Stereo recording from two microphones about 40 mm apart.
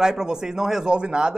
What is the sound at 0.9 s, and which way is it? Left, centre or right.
Speech, right.